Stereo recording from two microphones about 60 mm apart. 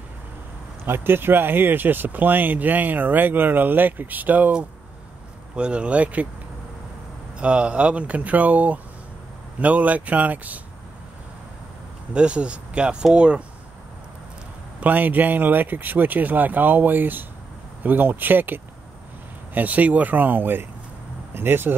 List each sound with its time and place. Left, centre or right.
0.8 s speech: right
5.6 s speech: centre
7.3 s speech: right
12.1 s speech: centre
14.8 s speech: right